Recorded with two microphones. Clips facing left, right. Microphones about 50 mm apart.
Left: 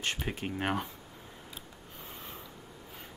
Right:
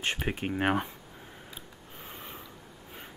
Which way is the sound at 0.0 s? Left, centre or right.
Right.